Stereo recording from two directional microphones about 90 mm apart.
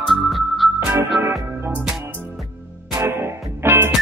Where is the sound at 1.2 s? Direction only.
25° right (ahead or behind).